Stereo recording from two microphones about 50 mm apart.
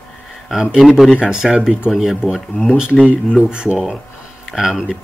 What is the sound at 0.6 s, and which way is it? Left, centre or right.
Speech, centre.